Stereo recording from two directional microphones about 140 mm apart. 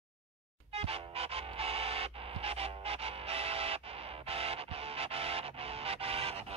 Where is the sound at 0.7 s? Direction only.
45° right (ahead or behind).